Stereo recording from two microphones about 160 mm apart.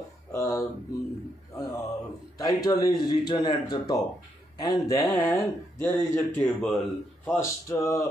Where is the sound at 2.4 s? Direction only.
20° left (ahead or behind).